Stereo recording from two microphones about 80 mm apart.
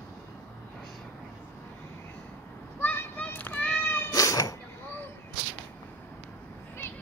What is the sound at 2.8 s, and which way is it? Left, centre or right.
Children playing, left.